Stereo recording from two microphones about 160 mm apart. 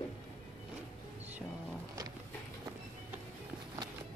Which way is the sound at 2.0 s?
20° right (ahead or behind).